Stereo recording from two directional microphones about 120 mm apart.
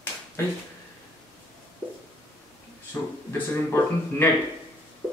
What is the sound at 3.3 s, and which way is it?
Speech, 20° left (ahead or behind).